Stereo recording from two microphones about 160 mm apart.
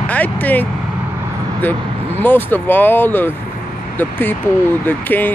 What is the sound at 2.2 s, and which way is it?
Speech, 10° left (ahead or behind).